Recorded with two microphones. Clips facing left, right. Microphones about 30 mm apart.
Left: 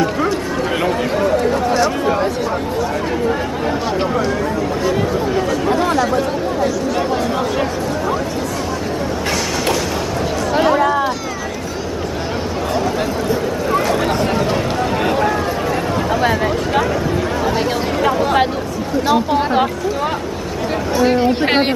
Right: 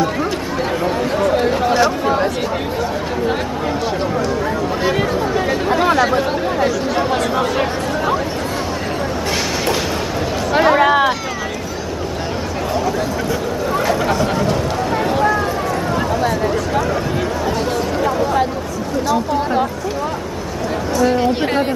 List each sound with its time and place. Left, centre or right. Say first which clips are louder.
1.7 s chatter: right 1 dB; centre
5.8 s chatter: right 1 dB; right
10.8 s run: right 3 dB; right
16.2 s a sound: left 1 dB; left
18.0 s a sound: left 3 dB; left
20.9 s chatter: left 1 dB; left
21.5 s chatter: left 3 dB; left